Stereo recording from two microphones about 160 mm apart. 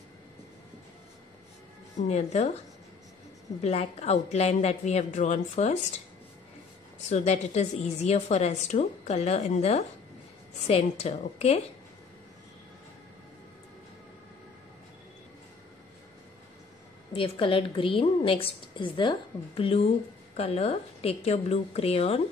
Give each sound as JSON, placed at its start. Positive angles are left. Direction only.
{"t": 2.0, "sound": "a woman's voice", "side_deg": 45}
{"t": 3.6, "sound": "a woman's voice", "side_deg": 40}
{"t": 7.0, "sound": "a woman's voice", "side_deg": 45}
{"t": 17.1, "sound": "a woman's voice", "side_deg": 35}